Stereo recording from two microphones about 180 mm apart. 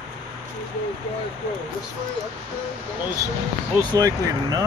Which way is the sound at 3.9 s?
20° right (ahead or behind).